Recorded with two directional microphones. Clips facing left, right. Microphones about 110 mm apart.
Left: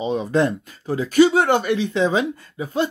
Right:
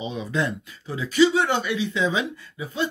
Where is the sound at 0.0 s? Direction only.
45° left (ahead or behind).